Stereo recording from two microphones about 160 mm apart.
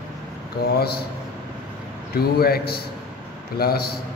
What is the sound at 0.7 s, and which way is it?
Speech, 80° left.